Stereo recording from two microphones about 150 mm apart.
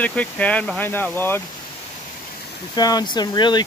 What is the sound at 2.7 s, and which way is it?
Speech, 25° left (ahead or behind).